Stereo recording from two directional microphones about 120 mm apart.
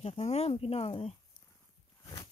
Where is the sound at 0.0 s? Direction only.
60° left (ahead or behind).